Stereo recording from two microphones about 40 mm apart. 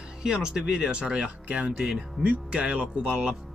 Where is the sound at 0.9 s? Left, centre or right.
Right.